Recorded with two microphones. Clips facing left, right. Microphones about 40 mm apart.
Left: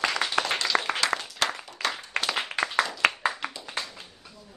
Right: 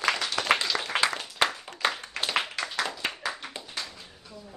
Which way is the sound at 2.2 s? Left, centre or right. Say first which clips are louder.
Left 7 dB; left.